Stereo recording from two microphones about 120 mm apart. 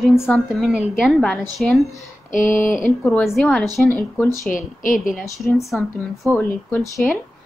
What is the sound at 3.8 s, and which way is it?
Speech, 20° left (ahead or behind).